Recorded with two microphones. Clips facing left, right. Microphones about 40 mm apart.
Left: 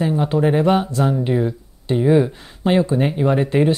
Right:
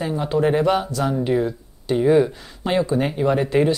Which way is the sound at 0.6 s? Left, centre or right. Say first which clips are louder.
Left 3 dB; left.